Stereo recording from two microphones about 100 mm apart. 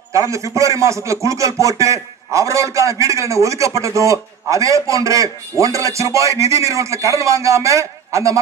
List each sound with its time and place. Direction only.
0.1 s a man's voice: 30° right (ahead or behind)